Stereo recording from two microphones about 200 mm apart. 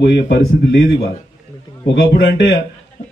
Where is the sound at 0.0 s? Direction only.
55° left (ahead or behind).